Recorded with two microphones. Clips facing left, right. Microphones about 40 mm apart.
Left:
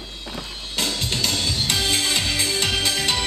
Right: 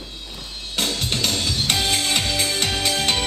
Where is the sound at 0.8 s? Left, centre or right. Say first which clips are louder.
Right 1 dB; right.